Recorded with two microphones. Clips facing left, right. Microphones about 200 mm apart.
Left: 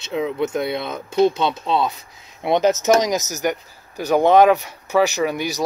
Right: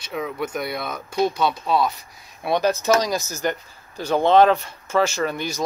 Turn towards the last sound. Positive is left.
turn(degrees=10)  # may be behind; listen again after turning